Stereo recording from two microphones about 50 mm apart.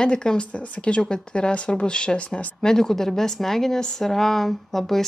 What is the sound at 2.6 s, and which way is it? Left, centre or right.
A woman's voice, centre.